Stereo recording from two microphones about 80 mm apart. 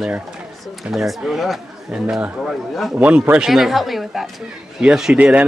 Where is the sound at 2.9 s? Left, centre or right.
Right.